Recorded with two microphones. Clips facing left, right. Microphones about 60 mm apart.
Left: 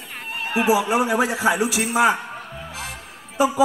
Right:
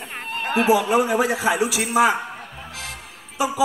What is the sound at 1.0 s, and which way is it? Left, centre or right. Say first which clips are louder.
Speech: even; left.